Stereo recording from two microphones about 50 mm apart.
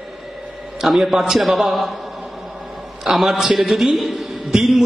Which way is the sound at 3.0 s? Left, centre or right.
Centre.